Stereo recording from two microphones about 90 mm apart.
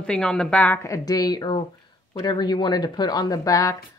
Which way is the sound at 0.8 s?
40° left (ahead or behind).